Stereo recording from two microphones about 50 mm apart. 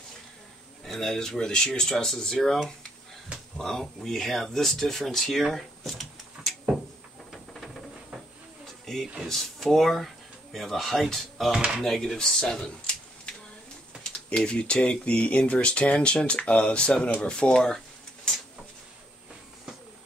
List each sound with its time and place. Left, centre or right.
0.8 s speech: centre
8.9 s a sound: centre
9.3 s speech: centre